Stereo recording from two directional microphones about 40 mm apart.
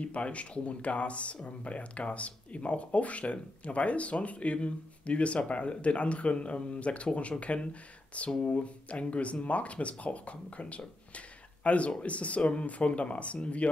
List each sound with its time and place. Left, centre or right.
0.0 s speech: left
11.1 s a sound: left
12.0 s speech: left